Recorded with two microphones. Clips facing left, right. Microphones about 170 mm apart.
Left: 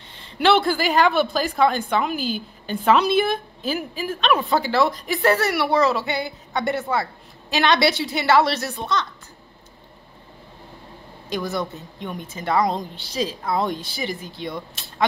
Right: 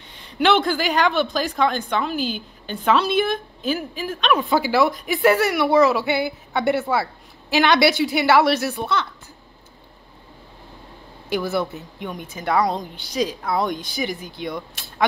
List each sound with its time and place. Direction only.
0.4 s a woman's voice: 5° left (ahead or behind)
11.2 s a woman's voice: 5° right (ahead or behind)